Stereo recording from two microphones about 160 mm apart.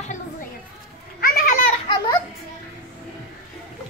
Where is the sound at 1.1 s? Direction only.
65° left (ahead or behind).